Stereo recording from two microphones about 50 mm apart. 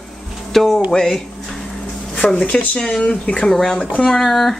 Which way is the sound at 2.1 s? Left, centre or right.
Left.